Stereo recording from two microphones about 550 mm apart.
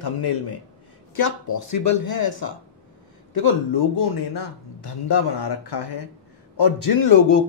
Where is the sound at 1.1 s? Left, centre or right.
Left.